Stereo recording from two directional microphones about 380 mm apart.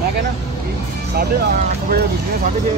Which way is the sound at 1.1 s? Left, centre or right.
Right.